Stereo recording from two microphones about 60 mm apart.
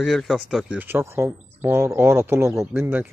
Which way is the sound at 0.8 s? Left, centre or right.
Right.